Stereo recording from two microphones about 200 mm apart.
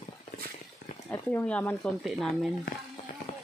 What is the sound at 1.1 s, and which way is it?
Speech, 10° left (ahead or behind).